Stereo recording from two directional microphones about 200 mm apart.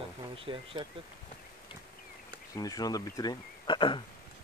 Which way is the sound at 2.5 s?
15° left (ahead or behind).